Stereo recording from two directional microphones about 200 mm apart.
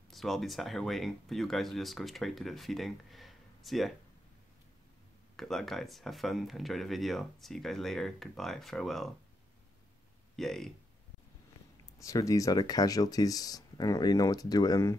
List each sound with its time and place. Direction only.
0.1 s speech: centre (ahead or behind)
5.3 s speech: centre (ahead or behind)
10.3 s speech: centre (ahead or behind)
12.0 s speech: 15° left (ahead or behind)